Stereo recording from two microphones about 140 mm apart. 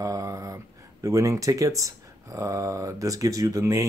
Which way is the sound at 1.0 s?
20° right (ahead or behind).